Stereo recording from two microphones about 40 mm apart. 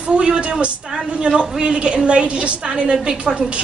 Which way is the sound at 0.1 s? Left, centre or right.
Right.